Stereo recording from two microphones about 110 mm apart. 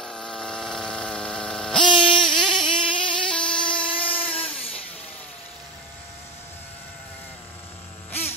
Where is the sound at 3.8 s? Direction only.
55° left (ahead or behind).